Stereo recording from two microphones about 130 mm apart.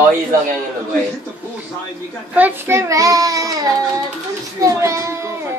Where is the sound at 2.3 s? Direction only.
15° right (ahead or behind).